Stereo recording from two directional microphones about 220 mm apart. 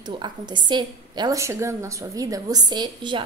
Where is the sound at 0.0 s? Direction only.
20° right (ahead or behind).